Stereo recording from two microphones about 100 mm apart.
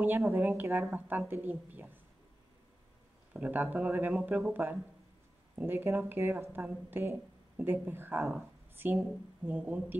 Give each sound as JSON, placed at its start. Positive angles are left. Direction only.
{"t": 0.0, "sound": "speech", "side_deg": -20}
{"t": 3.3, "sound": "speech", "side_deg": -15}